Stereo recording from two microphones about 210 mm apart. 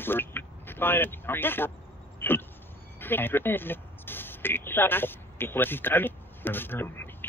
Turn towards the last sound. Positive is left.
turn(degrees=10)  # may be behind; listen again after turning